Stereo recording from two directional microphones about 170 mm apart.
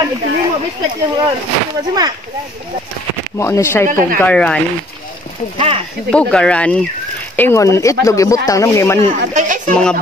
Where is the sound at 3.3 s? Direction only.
15° left (ahead or behind).